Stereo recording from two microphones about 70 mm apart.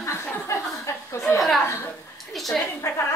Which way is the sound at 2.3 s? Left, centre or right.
Centre.